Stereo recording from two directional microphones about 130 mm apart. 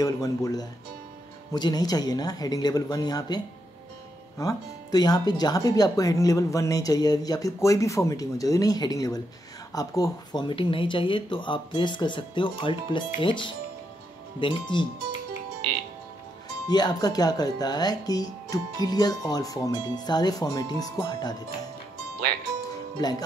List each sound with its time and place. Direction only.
0.0 s speech: 30° left (ahead or behind)
16.6 s speech: 30° left (ahead or behind)
22.9 s speech: 30° left (ahead or behind)